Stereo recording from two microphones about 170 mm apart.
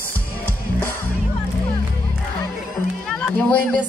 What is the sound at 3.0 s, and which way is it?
Run, 5° left (ahead or behind).